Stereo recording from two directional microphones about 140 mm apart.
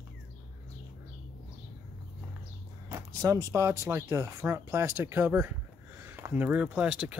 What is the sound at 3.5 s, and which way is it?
Speech, 20° right (ahead or behind).